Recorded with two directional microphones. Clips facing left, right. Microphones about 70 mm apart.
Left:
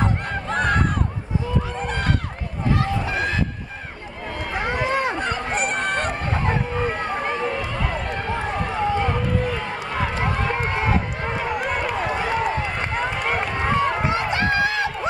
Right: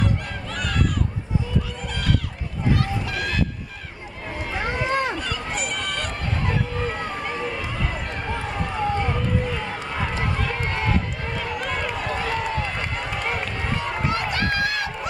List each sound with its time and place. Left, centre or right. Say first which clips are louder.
0.0 s a sound: left 3 dB; left
1.8 s run: left 2 dB; left
4.6 s run: left 1 dB; left
5.2 s fowl: left 5 dB; left
8.3 s run: left 2 dB; left
10.3 s run: left 3 dB; left
11.6 s run: left 3 dB; centre
12.1 s run: left 2 dB; left
12.9 s run: left 4 dB; left
13.9 s run: left 3 dB; left